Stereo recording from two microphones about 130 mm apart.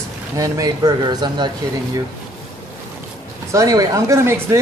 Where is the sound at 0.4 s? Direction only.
30° right (ahead or behind).